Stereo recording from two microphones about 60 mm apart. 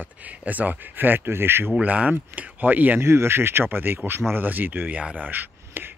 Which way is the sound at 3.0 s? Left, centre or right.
Right.